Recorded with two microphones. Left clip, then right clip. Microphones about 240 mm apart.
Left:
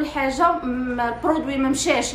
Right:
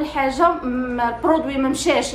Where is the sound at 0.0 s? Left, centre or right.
Centre.